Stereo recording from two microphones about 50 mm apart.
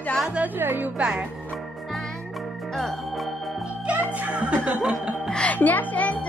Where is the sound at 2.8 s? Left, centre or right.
Centre.